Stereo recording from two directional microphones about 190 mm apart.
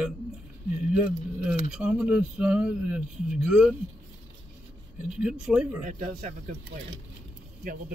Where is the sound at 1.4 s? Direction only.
5° right (ahead or behind).